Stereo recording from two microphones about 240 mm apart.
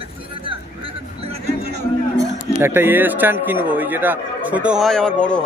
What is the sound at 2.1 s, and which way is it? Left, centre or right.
A man's voice, centre.